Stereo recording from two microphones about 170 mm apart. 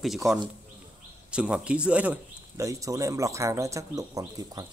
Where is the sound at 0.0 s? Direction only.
Centre (ahead or behind).